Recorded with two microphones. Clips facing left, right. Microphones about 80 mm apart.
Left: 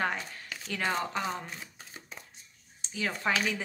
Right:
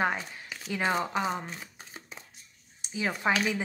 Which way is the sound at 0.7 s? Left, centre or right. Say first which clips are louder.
Right 3 dB; centre.